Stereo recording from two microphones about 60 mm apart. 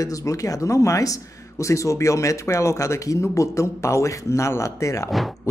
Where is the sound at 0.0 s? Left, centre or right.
Left.